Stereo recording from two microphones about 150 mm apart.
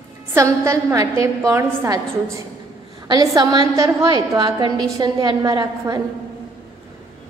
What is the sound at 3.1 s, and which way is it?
A woman's voice, 25° right (ahead or behind).